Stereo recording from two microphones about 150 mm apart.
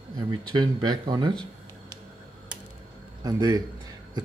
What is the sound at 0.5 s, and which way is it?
Speech, 30° right (ahead or behind).